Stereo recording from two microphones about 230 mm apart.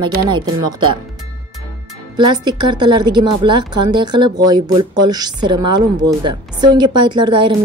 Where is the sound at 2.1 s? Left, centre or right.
Centre.